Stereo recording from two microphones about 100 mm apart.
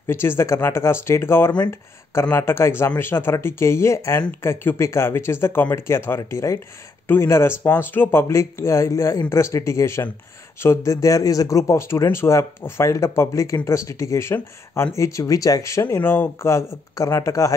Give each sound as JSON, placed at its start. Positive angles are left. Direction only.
{"t": 0.0, "sound": "speech", "side_deg": 25}